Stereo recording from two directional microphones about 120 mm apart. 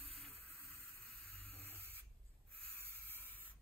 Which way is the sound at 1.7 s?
15° right (ahead or behind).